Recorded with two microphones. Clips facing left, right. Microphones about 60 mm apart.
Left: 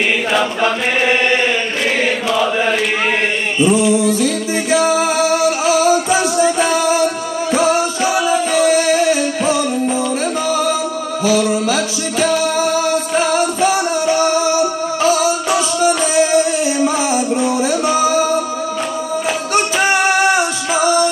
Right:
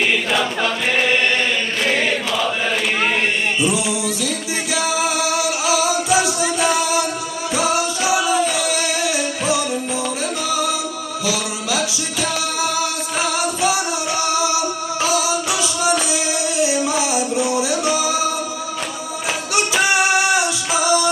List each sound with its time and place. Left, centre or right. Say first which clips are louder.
0.3 s choir: left 4 dB; centre
1.0 s chant: left 5 dB; left
1.9 s chant: left 3 dB; centre
3.7 s music: left 8 dB; left
8.5 s music: left 8 dB; left
11.2 s music: left 9 dB; left
15.5 s music: left 4 dB; left
19.5 s music: left 2 dB; left